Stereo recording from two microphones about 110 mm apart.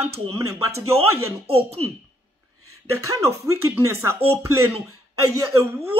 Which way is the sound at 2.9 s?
30° right (ahead or behind).